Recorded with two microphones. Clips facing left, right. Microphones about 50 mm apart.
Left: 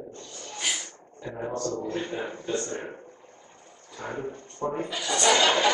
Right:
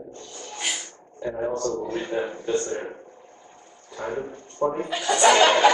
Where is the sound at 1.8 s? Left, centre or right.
Centre.